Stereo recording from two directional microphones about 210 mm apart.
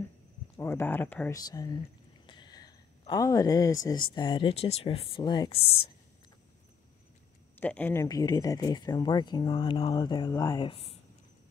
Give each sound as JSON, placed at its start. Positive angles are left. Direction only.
{"t": 0.6, "sound": "speech", "side_deg": 10}
{"t": 2.2, "sound": "a sound", "side_deg": 20}
{"t": 4.1, "sound": "speech", "side_deg": 20}
{"t": 7.5, "sound": "speech", "side_deg": 10}